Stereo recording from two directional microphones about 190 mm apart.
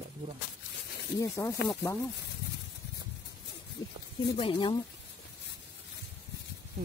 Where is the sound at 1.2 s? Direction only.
15° left (ahead or behind).